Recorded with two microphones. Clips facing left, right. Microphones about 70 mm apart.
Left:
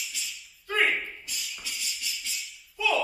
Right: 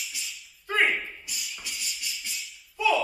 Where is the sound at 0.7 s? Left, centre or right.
Centre.